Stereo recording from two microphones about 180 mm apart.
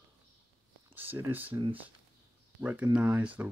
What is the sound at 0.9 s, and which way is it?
Speech, 10° right (ahead or behind).